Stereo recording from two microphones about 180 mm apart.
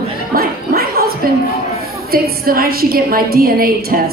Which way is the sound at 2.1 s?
55° right (ahead or behind).